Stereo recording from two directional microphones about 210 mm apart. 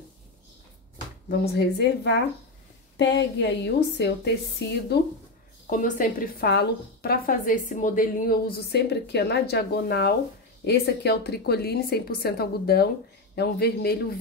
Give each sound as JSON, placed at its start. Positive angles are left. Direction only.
{"t": 1.4, "sound": "a woman's voice", "side_deg": 55}
{"t": 5.7, "sound": "a woman's voice", "side_deg": 40}